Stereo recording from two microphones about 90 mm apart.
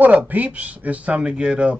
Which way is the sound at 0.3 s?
15° right (ahead or behind).